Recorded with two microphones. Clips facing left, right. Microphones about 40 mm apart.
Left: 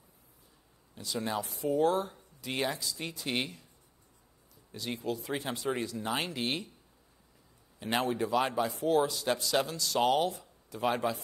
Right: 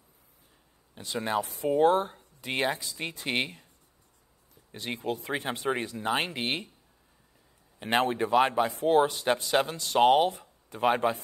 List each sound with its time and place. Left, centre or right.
0.9 s speech: right
4.7 s speech: right
7.8 s speech: right